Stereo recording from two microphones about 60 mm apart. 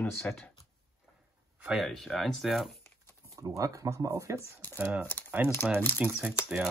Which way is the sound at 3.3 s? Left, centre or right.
Right.